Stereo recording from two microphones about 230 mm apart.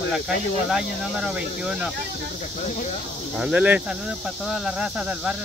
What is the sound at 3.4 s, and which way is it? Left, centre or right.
Speech, centre.